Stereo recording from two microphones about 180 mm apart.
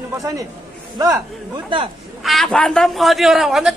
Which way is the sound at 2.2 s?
Centre (ahead or behind).